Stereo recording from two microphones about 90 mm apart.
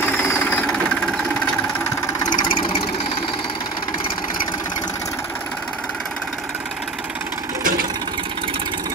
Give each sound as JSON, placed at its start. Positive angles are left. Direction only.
{"t": 0.2, "sound": "engine", "side_deg": 20}
{"t": 2.2, "sound": "engine", "side_deg": 55}